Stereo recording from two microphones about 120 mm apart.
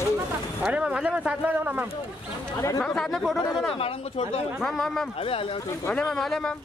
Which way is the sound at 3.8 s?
55° left (ahead or behind).